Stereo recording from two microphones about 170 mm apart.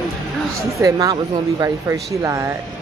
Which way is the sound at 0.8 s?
20° right (ahead or behind).